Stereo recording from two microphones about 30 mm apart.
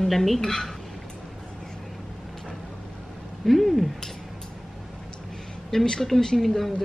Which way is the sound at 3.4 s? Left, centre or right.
Centre.